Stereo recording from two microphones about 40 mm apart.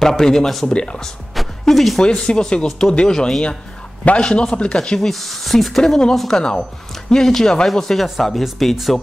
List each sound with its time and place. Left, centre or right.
0.0 s speech: centre
1.3 s music: centre
2.0 s speech: left
4.2 s speech: left
5.0 s speech: centre